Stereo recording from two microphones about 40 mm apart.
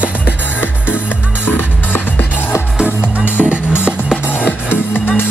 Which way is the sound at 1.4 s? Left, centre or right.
Left.